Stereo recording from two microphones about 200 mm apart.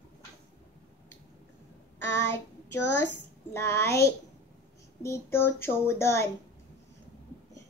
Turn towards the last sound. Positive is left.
turn(degrees=15)  # may be behind; listen again after turning